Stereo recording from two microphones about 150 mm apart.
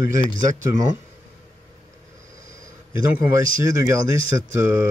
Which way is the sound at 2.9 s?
20° right (ahead or behind).